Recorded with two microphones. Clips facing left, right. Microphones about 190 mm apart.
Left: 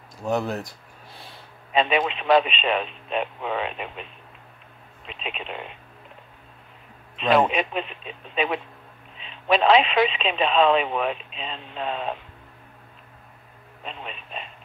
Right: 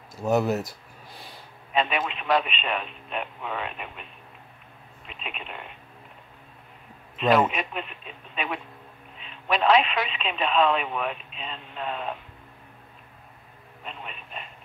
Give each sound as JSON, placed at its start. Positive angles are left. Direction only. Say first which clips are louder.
{"t": 0.2, "sound": "speech", "louder": "right 2 dB", "side_deg": -5}
{"t": 1.1, "sound": "a sound", "louder": "even", "side_deg": 0}
{"t": 1.7, "sound": "speech", "louder": "left 4 dB", "side_deg": 25}
{"t": 5.0, "sound": "speech", "louder": "left 5 dB", "side_deg": 25}
{"t": 7.2, "sound": "speech", "louder": "left 1 dB", "side_deg": 25}
{"t": 9.3, "sound": "speech", "louder": "left 3 dB", "side_deg": 25}
{"t": 13.8, "sound": "speech", "louder": "left 3 dB", "side_deg": 25}